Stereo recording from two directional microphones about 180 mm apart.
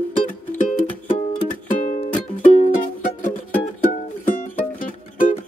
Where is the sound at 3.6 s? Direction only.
40° left (ahead or behind).